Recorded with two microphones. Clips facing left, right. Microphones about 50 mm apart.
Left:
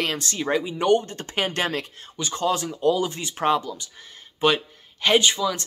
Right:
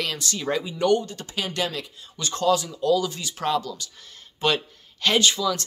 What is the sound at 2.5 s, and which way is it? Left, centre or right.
Speech, left.